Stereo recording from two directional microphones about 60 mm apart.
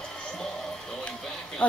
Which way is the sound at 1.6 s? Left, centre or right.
Left.